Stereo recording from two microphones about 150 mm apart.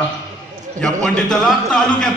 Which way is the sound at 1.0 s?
5° left (ahead or behind).